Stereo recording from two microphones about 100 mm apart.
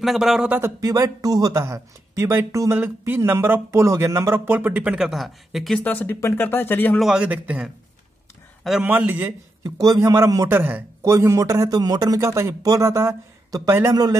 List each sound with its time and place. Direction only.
0.0 s speech: centre (ahead or behind)
0.7 s speech: 35° right (ahead or behind)
4.5 s speech: 20° right (ahead or behind); by 5.8 s centre (ahead or behind)
5.9 s speech: 15° left (ahead or behind)
7.0 s a man's voice: 5° right (ahead or behind)
8.8 s a man's voice: 15° right (ahead or behind)
9.6 s speech: 40° right (ahead or behind)
10.5 s speech: 20° right (ahead or behind)
11.7 s speech: 40° right (ahead or behind)